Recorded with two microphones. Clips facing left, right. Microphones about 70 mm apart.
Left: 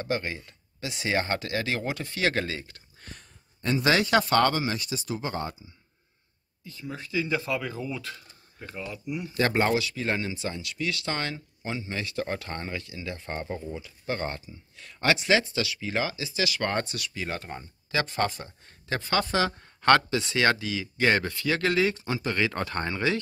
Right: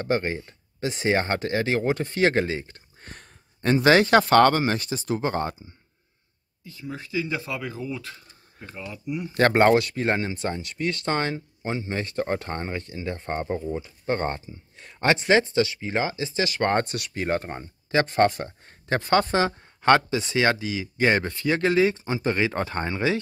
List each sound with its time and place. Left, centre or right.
0.0 s speech: right
3.2 s speech: right
6.6 s speech: centre
8.5 s speech: centre
9.3 s speech: right
19.6 s speech: centre